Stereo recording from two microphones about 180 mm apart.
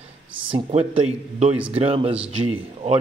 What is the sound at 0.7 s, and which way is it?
Speech, 35° right (ahead or behind).